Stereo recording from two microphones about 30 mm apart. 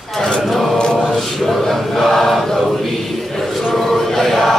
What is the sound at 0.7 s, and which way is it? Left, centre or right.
Mantra, left.